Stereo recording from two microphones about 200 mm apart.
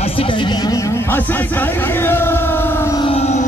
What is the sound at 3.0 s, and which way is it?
Music, 30° left (ahead or behind).